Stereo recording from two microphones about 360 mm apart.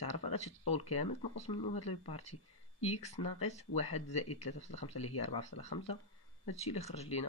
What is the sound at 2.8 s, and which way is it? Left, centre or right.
Speech, centre.